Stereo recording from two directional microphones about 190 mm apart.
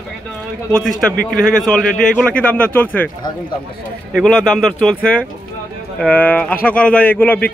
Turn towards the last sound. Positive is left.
turn(degrees=10)  # may be behind; listen again after turning